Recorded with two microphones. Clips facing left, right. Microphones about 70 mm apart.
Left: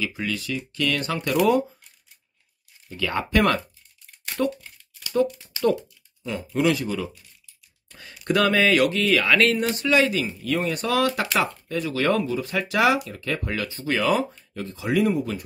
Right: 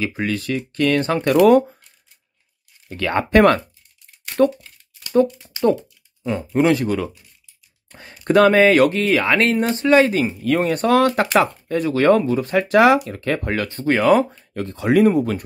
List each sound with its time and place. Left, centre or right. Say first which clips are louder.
0.0 s speech: right 5 dB; right
1.4 s speech: right 7 dB; right
2.9 s speech: right 7 dB; right
5.1 s speech: right 6 dB; right
7.9 s speech: right 7 dB; right